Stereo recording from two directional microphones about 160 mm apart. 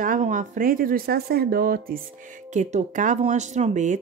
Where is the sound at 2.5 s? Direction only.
45° right (ahead or behind).